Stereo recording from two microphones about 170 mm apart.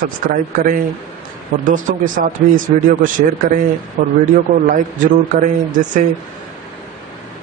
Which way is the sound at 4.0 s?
50° right (ahead or behind).